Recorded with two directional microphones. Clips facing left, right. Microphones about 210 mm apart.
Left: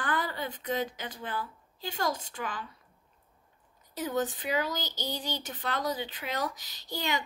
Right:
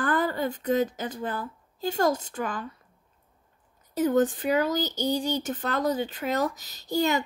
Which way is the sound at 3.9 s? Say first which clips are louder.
Right 9 dB; 50° right (ahead or behind).